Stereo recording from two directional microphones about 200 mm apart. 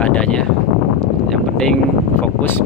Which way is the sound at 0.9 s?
Centre (ahead or behind).